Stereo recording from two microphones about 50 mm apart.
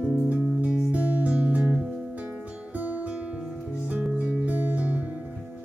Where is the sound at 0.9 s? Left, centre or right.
Right.